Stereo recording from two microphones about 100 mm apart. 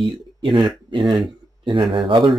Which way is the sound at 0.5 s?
50° right (ahead or behind).